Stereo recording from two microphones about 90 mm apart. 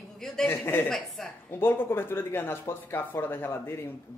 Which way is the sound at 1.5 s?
25° left (ahead or behind).